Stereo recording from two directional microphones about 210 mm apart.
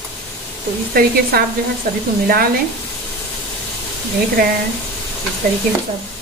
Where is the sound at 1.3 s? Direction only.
45° right (ahead or behind).